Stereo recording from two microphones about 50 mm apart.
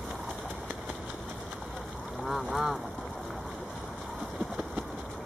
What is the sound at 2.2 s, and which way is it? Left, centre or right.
Speech, centre.